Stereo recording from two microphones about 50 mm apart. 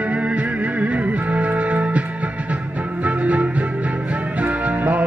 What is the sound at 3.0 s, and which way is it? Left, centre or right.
Music, right.